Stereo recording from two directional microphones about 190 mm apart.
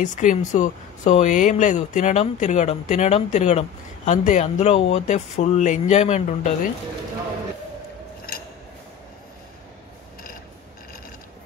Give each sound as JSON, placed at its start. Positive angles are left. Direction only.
{"t": 0.0, "sound": "speech", "side_deg": 40}